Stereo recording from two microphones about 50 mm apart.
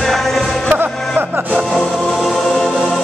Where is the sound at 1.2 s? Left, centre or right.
Right.